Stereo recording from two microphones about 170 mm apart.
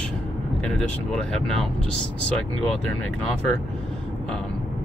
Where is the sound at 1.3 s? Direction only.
Centre (ahead or behind).